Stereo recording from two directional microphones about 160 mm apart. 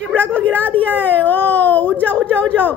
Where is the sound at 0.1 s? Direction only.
10° left (ahead or behind).